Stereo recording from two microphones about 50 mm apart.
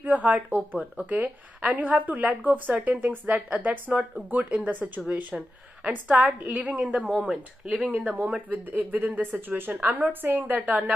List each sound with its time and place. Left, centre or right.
0.0 s a woman's voice: right
8.5 s a woman's voice: right